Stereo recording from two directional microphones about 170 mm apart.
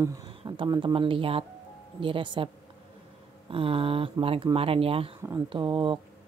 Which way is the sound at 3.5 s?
30° right (ahead or behind).